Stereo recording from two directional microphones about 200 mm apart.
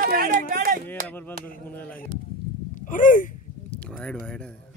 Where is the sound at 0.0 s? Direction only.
50° right (ahead or behind).